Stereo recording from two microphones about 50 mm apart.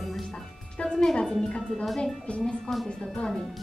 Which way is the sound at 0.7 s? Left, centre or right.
Centre.